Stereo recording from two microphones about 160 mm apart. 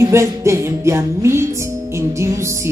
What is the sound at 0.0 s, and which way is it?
Speech, 15° right (ahead or behind).